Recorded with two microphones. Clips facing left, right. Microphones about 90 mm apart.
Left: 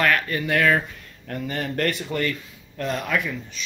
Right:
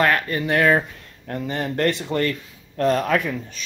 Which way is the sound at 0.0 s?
25° right (ahead or behind).